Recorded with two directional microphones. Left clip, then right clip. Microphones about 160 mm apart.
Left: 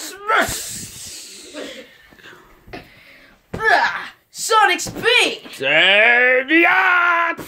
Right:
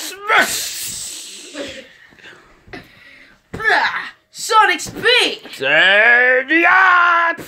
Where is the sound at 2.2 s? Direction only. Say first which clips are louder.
Right 1 dB; 10° left (ahead or behind).